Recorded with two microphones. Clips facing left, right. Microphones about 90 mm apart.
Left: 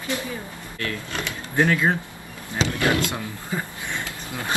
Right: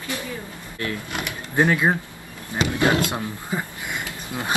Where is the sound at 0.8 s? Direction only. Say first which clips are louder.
Right 1 dB; 20° right (ahead or behind).